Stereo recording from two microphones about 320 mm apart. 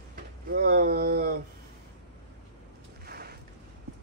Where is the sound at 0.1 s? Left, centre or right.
Right.